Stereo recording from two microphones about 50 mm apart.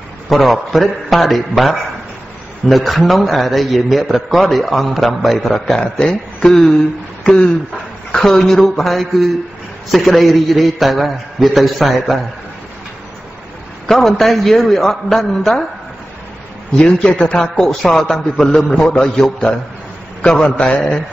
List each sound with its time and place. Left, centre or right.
0.3 s a man's voice: centre
5.8 s a man's voice: centre
8.1 s a man's voice: centre
13.8 s a man's voice: centre
16.7 s a man's voice: centre